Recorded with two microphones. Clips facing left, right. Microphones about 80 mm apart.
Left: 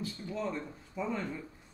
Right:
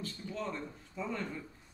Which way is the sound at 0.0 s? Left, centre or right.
Centre.